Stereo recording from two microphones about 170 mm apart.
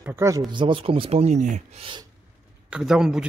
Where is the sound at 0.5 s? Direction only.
30° right (ahead or behind).